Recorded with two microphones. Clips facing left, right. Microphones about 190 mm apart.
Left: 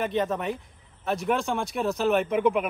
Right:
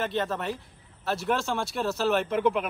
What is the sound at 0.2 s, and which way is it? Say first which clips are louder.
Speech: left 3 dB; centre (ahead or behind).